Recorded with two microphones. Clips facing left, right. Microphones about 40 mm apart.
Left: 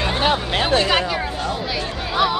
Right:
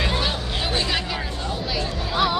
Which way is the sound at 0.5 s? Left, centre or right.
Left.